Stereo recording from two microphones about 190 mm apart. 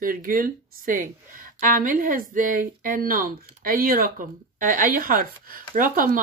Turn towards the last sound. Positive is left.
turn(degrees=-50)  # may be behind; listen again after turning